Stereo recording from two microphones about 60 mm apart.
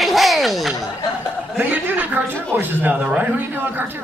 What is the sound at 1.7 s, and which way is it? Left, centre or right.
A woman's voice, right.